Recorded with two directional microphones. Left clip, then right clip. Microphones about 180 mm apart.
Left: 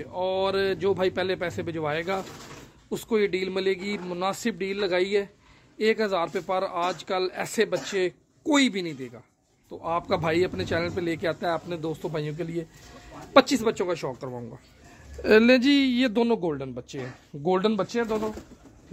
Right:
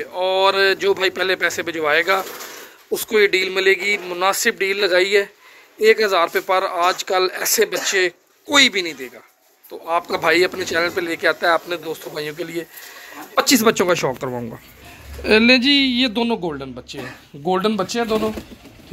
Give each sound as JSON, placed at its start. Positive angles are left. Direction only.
{"t": 0.0, "sound": "speech", "side_deg": 5}
{"t": 15.2, "sound": "speech", "side_deg": 50}
{"t": 17.5, "sound": "speech", "side_deg": 50}